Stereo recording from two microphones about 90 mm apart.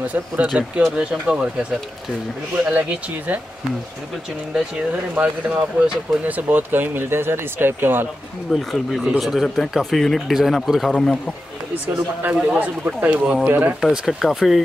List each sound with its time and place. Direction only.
0.0 s speech: 15° right (ahead or behind)
4.6 s speech: 15° right (ahead or behind)
8.5 s a man's voice: centre (ahead or behind)
12.5 s speech: 15° right (ahead or behind)
13.7 s speech: 5° right (ahead or behind)